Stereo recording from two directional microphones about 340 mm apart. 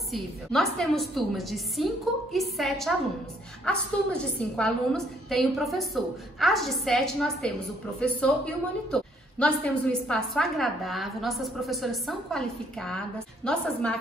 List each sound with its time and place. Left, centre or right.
0.1 s a woman's voice: centre